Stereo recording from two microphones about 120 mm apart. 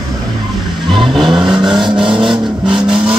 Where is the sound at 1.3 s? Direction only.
40° right (ahead or behind).